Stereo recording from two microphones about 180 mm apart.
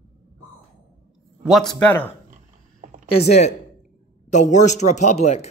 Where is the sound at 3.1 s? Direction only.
35° left (ahead or behind).